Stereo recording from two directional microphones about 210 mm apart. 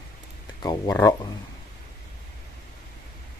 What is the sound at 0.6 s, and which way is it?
Speech, 20° left (ahead or behind).